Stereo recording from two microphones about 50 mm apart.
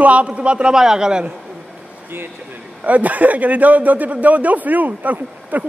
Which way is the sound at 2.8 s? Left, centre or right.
Right.